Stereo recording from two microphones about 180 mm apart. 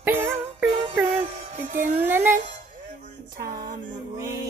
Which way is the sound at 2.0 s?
10° right (ahead or behind).